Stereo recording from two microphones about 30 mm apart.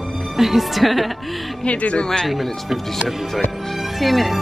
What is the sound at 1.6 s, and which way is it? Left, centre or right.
Speech, left.